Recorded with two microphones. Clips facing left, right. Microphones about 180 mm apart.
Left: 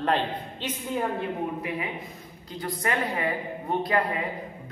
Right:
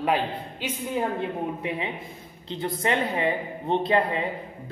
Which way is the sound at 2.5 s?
25° right (ahead or behind).